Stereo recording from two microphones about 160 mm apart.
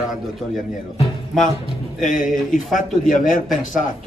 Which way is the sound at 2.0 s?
55° left (ahead or behind).